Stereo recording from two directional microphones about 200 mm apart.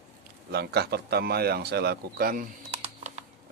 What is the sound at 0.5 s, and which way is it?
Speech, 55° right (ahead or behind).